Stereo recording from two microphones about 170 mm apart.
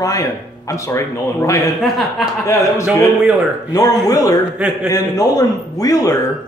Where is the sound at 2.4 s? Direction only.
20° left (ahead or behind).